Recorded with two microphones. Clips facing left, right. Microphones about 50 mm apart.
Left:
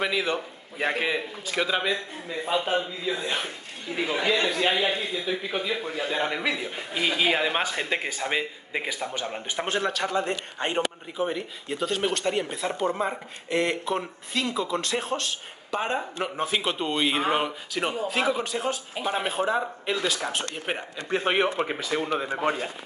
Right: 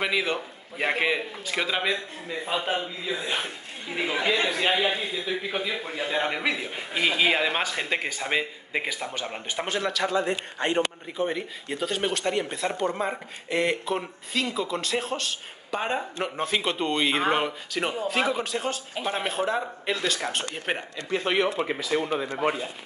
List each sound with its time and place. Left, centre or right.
0.0 s a man's voice: centre
9.7 s speech: left
11.1 s speech: centre
21.1 s speech: left
21.5 s speech: left